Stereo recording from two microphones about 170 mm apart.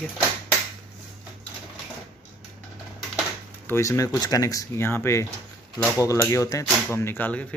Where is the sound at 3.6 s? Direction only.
15° left (ahead or behind).